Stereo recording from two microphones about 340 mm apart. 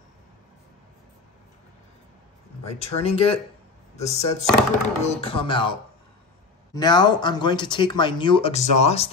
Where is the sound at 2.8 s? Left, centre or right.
Centre.